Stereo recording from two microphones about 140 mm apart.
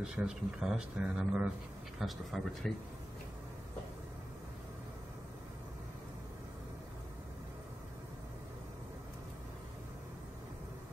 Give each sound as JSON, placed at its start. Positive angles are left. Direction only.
{"t": 0.0, "sound": "speech", "side_deg": -5}